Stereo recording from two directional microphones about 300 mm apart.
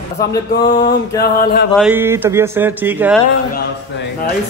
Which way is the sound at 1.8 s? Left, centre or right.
Centre.